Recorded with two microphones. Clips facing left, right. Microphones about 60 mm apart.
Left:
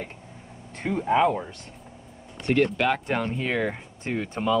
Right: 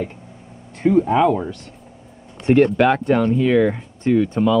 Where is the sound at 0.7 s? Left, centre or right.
Centre.